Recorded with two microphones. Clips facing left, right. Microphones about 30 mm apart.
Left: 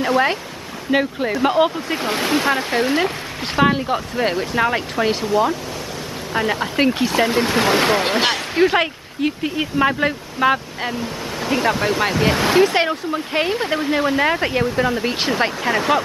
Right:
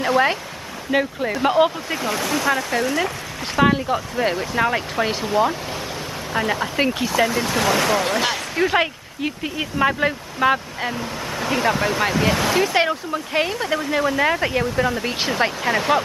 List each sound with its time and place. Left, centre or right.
0.0 s speech: centre
0.9 s speech: left
1.3 s speech: centre
2.0 s speech: left
3.7 s speech: centre
6.3 s speech: centre
7.1 s speech: left
8.6 s speech: centre
13.5 s speech: left; by 16.0 s centre